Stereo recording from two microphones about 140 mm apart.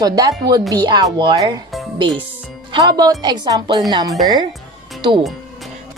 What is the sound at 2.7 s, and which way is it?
A woman's voice, 30° right (ahead or behind).